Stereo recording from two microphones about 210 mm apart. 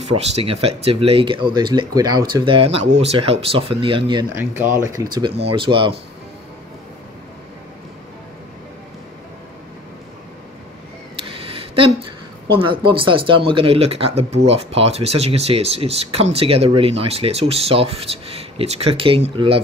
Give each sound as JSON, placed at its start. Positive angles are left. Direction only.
{"t": 0.0, "sound": "speech", "side_deg": -30}
{"t": 4.4, "sound": "speech", "side_deg": -10}
{"t": 11.2, "sound": "a sound", "side_deg": -25}
{"t": 12.5, "sound": "speech", "side_deg": -25}